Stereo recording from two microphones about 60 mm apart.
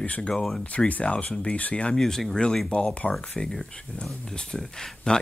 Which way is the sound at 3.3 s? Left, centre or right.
Centre.